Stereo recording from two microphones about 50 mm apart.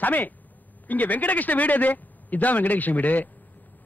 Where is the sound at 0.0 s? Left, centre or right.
Left.